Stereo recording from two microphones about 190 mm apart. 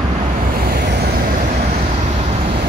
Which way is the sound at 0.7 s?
55° right (ahead or behind).